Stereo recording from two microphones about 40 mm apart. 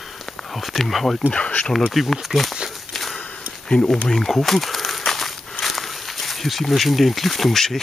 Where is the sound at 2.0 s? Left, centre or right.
Centre.